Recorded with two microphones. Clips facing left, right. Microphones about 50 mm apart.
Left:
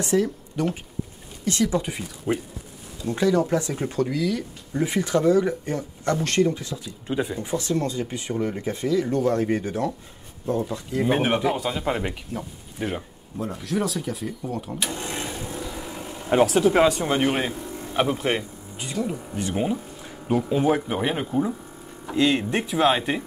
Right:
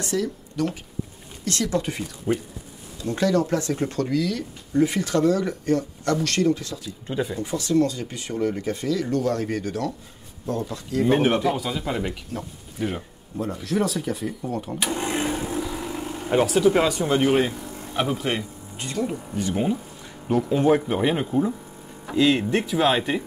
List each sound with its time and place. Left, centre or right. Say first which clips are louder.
0.1 s speech: left 4 dB; left
7.1 s speech: left 1 dB; centre
7.3 s speech: right 4 dB; left; by 15.0 s centre
15.0 s a sound: right 6 dB; centre
15.5 s vehicle: right 5 dB; centre
16.9 s speech: right 3 dB; centre
19.3 s speech: right 1 dB; centre